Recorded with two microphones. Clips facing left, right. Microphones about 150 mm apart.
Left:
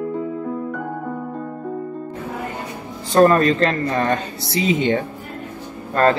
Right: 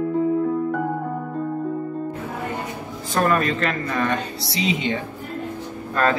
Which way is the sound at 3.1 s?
35° left (ahead or behind).